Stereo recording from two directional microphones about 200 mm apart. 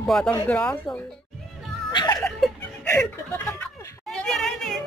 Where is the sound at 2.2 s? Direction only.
10° left (ahead or behind).